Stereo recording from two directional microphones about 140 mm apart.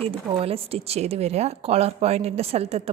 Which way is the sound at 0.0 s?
45° right (ahead or behind).